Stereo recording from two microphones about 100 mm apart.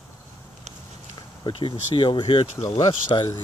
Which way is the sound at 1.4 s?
55° left (ahead or behind).